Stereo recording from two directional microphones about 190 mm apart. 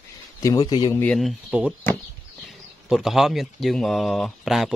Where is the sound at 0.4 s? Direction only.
20° left (ahead or behind).